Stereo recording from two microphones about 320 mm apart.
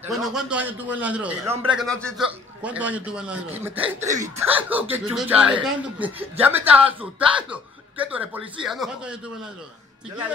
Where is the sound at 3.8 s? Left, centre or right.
Centre.